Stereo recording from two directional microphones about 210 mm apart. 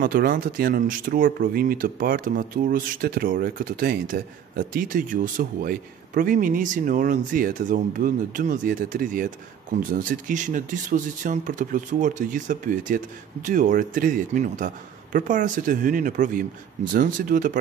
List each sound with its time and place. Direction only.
0.0 s speech: 45° right (ahead or behind)